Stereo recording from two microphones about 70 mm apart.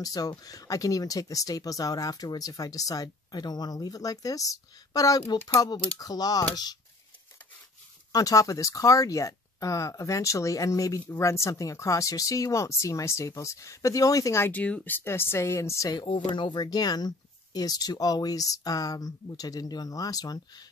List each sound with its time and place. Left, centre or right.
0.0 s speech: left
8.1 s speech: left
14.5 s speech: left
16.5 s speech: left